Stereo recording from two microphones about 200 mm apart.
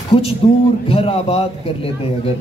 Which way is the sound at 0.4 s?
30° left (ahead or behind).